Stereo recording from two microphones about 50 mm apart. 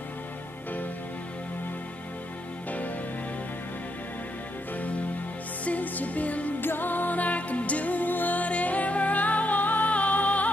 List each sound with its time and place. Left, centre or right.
4.7 s music: left
6.6 s music: left